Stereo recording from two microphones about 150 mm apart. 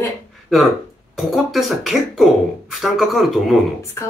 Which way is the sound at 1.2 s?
Centre (ahead or behind).